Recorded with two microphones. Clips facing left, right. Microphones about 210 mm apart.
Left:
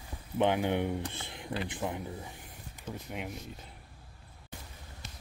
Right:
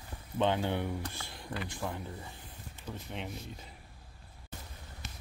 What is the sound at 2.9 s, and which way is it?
Speech, 5° left (ahead or behind).